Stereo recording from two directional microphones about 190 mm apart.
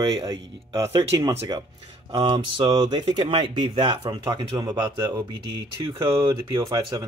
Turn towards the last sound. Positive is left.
turn(degrees=-20)  # may be behind; listen again after turning